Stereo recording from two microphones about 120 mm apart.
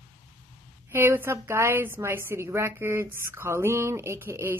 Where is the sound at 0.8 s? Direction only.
20° right (ahead or behind).